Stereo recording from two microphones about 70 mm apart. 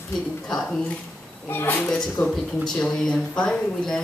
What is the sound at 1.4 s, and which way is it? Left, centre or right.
Speech, left.